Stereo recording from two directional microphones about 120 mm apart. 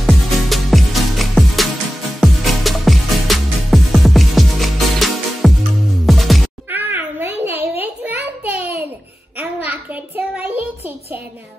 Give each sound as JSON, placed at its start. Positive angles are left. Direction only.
{"t": 0.0, "sound": "music", "side_deg": 0}
{"t": 6.7, "sound": "a sound", "side_deg": -15}
{"t": 9.4, "sound": "child singing", "side_deg": -15}